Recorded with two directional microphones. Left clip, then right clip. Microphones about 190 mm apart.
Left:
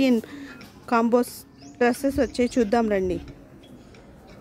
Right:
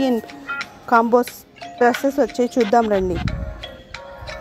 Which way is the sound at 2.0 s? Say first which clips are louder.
Right 5 dB; 10° left (ahead or behind).